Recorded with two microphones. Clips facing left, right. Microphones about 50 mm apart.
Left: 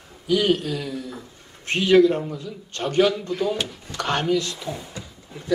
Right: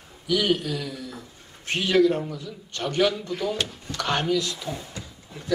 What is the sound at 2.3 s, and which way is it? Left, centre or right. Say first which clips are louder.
Speech: left 2 dB; left.